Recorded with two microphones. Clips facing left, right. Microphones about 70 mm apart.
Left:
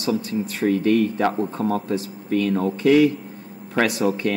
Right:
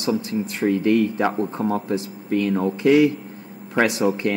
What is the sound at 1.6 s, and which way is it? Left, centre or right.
Speech, centre.